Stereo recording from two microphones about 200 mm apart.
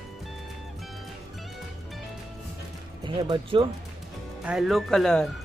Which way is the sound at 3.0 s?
25° right (ahead or behind).